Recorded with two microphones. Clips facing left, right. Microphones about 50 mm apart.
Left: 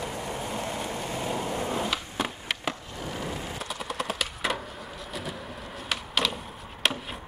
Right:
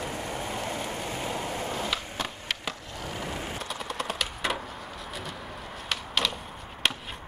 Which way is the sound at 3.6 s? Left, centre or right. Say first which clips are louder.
Left 1 dB; centre.